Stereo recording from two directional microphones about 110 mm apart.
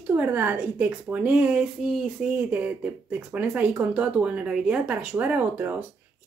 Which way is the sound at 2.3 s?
15° right (ahead or behind).